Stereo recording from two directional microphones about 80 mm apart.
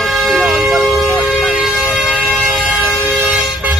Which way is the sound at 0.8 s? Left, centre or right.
Centre.